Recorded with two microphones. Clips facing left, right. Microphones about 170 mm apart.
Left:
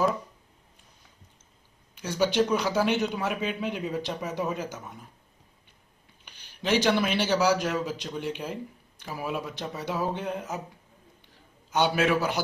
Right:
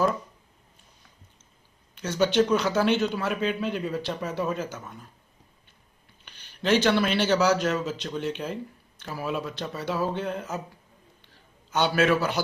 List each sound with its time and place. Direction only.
2.0 s a man's voice: 10° left (ahead or behind)
6.2 s a man's voice: 10° left (ahead or behind)
11.7 s a man's voice: 15° left (ahead or behind)